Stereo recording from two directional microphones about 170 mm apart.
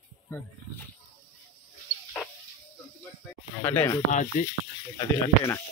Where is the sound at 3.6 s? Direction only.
10° left (ahead or behind).